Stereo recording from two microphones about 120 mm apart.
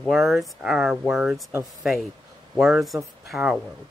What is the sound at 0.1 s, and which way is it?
Speech, centre (ahead or behind).